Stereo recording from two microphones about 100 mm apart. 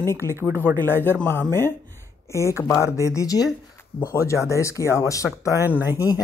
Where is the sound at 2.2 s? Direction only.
30° left (ahead or behind).